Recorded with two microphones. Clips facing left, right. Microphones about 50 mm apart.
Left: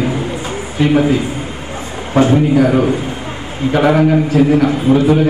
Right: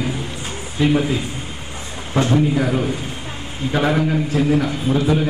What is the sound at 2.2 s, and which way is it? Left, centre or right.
Speech, centre.